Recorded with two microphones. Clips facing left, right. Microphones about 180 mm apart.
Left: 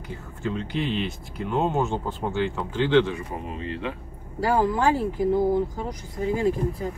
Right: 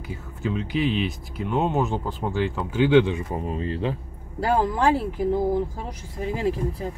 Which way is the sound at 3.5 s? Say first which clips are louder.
Right 4 dB; 35° right (ahead or behind).